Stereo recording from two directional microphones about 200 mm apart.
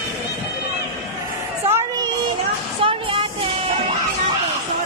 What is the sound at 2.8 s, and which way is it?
Music, 30° right (ahead or behind).